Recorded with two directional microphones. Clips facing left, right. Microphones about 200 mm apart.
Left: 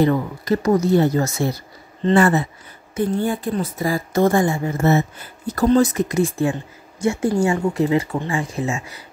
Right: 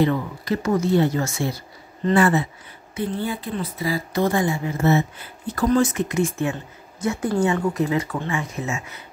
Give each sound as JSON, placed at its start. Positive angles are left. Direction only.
{"t": 0.0, "sound": "a woman's voice", "side_deg": 40}